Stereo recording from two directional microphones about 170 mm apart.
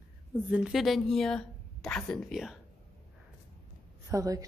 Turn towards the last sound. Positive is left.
turn(degrees=-20)  # may be behind; listen again after turning